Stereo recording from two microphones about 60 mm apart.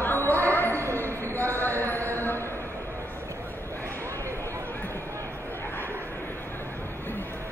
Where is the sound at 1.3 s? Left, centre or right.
Left.